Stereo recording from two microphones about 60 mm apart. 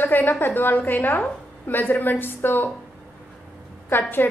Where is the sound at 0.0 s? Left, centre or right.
Left.